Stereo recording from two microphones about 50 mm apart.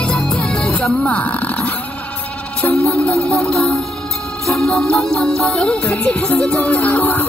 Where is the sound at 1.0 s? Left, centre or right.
Left.